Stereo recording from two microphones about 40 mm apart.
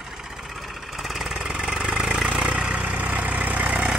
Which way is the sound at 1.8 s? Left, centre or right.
Centre.